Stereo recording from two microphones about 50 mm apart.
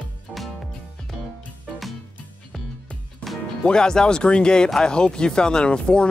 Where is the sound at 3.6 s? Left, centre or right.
Centre.